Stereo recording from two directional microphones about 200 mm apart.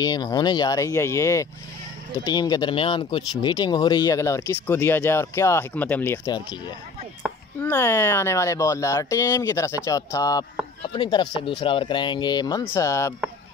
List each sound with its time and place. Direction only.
0.0 s speech: 20° left (ahead or behind)
7.6 s speech: 10° left (ahead or behind)